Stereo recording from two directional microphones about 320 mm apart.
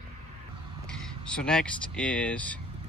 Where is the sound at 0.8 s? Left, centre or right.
Centre.